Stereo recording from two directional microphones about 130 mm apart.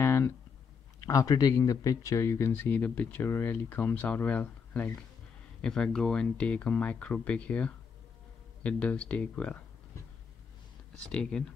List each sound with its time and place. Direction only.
0.0 s a sound: 20° left (ahead or behind)
1.0 s speech: 25° left (ahead or behind); by 9.6 s 10° left (ahead or behind)
11.1 s speech: 5° left (ahead or behind)